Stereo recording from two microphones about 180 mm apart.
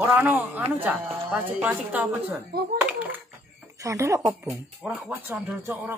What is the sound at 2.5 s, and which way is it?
Speech, 60° right (ahead or behind).